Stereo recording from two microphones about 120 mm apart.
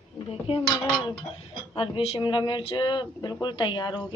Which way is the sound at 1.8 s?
50° left (ahead or behind).